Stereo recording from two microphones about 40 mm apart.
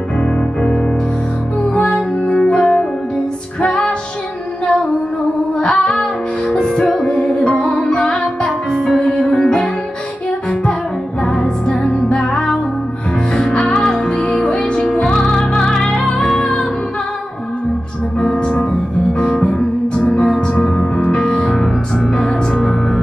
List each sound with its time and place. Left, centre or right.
0.6 s music: centre
1.7 s music: left
2.5 s music: centre
5.6 s female singing: left
6.5 s music: centre
8.5 s music: centre
13.7 s music: centre
18.3 s music: centre
21.5 s music: centre